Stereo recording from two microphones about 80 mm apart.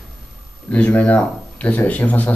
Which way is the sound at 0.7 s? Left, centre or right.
Centre.